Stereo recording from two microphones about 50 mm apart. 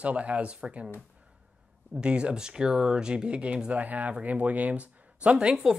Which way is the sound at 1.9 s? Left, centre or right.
Right.